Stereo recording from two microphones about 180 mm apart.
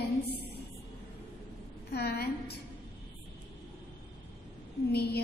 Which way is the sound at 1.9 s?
60° left (ahead or behind).